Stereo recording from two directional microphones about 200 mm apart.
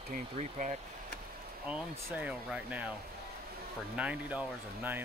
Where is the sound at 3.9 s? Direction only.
5° right (ahead or behind).